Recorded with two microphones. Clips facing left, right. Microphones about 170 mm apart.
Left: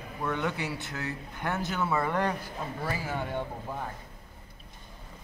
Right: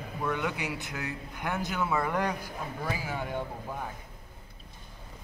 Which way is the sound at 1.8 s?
Centre (ahead or behind).